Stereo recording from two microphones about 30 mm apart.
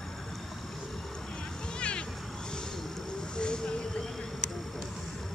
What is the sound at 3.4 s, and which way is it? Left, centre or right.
Vehicle, left.